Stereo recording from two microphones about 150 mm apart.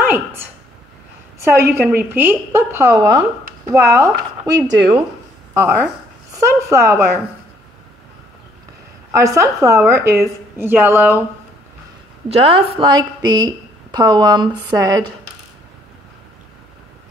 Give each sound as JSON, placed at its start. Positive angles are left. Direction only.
{"t": 0.1, "sound": "a woman's voice", "side_deg": -15}
{"t": 1.6, "sound": "a woman's voice", "side_deg": -15}
{"t": 9.1, "sound": "a woman's voice", "side_deg": -20}
{"t": 12.3, "sound": "a woman's voice", "side_deg": -40}